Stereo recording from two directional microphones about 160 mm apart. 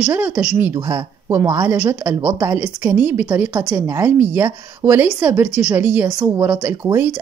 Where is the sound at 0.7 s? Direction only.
20° right (ahead or behind).